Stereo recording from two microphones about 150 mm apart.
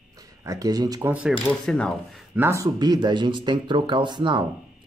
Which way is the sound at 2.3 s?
15° right (ahead or behind).